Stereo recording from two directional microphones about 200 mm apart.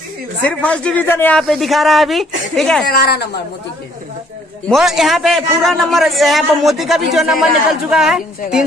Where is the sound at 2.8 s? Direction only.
50° left (ahead or behind).